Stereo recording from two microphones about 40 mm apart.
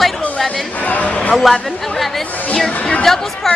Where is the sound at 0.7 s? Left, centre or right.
Left.